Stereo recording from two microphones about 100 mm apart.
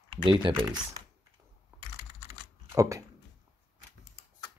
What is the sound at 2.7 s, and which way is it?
Speech, 30° right (ahead or behind).